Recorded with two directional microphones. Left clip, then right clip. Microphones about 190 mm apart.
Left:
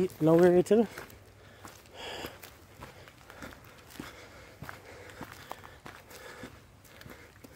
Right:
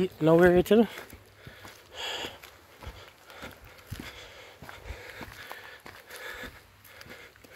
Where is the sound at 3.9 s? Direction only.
35° left (ahead or behind).